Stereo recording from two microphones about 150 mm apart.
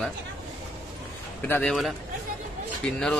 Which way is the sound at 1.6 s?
Centre (ahead or behind).